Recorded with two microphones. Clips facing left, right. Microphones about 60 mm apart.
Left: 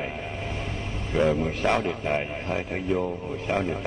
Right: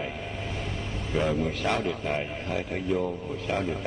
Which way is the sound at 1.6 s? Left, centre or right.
Left.